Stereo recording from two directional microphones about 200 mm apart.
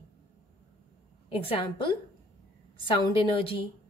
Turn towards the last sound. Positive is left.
turn(degrees=25)  # may be behind; listen again after turning